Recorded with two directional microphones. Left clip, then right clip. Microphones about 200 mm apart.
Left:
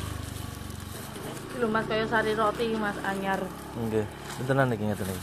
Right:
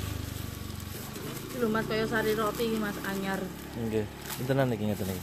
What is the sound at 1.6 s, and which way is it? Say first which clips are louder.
Speech: left 2 dB; 20° right (ahead or behind).